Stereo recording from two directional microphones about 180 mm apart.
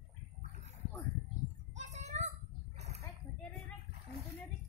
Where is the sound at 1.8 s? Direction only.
40° right (ahead or behind).